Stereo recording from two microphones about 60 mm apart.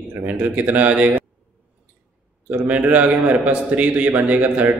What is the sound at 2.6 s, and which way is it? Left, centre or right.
A man's voice, right.